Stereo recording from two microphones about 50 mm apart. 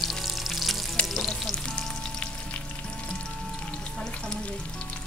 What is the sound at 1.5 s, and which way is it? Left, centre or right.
Frying, centre.